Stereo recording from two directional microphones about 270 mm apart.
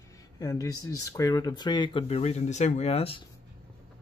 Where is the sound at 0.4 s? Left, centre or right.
Centre.